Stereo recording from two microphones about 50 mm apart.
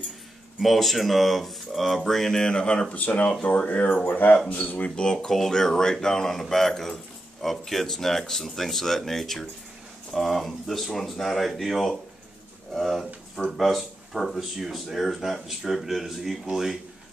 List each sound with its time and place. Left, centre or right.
0.6 s speech: centre; by 4.8 s left
4.8 s speech: centre